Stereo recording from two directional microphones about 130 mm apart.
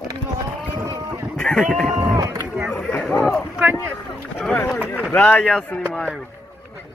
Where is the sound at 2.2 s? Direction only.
30° right (ahead or behind).